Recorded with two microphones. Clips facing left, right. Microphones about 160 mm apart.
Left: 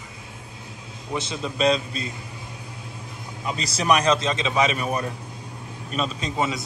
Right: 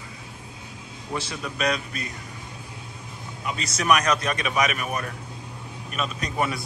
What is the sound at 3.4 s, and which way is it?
A man's voice, 35° left (ahead or behind).